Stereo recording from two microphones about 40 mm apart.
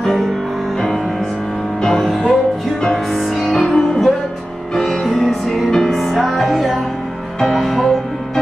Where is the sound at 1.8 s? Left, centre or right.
Centre.